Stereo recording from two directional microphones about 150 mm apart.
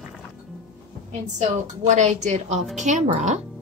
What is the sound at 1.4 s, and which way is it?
Speech, 55° right (ahead or behind).